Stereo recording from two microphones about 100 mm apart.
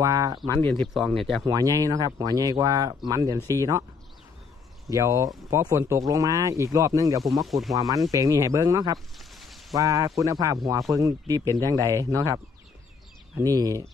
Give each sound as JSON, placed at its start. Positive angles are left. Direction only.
{"t": 0.0, "sound": "a sound", "side_deg": -35}
{"t": 0.5, "sound": "speech", "side_deg": 15}
{"t": 0.9, "sound": "speech", "side_deg": 0}
{"t": 1.4, "sound": "speech", "side_deg": -35}
{"t": 4.8, "sound": "speech", "side_deg": -35}
{"t": 7.4, "sound": "speech", "side_deg": 0}
{"t": 7.7, "sound": "speech", "side_deg": -35}
{"t": 9.4, "sound": "a sound", "side_deg": 0}
{"t": 9.8, "sound": "speech", "side_deg": -35}
{"t": 13.4, "sound": "speech", "side_deg": -35}